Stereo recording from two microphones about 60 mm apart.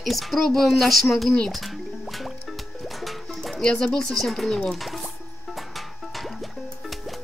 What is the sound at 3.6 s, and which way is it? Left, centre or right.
Speech, centre.